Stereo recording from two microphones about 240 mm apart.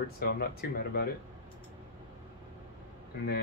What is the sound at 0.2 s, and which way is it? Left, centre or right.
Speech, left.